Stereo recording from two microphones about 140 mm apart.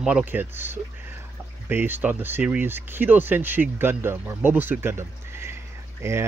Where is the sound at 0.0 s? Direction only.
10° right (ahead or behind).